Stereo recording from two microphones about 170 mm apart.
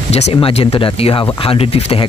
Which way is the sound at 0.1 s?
35° left (ahead or behind).